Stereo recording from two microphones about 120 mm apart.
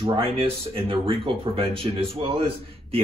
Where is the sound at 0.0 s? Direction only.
45° right (ahead or behind).